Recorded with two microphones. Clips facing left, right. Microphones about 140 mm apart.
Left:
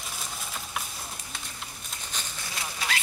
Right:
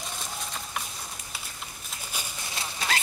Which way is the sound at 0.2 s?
Centre (ahead or behind).